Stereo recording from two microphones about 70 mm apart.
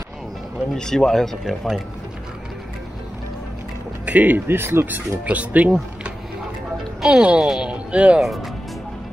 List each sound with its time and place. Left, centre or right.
0.7 s speech: centre
4.0 s speech: right
4.6 s speech: right
5.2 s speech: right